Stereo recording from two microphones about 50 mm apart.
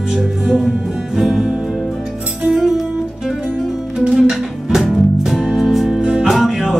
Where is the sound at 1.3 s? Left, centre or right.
Centre.